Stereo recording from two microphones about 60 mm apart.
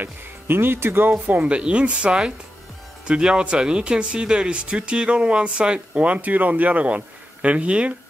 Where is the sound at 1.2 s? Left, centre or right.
Right.